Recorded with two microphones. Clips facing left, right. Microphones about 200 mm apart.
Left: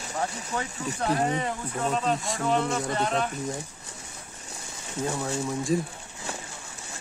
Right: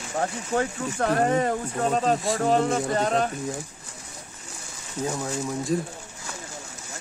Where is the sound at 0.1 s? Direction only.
40° right (ahead or behind).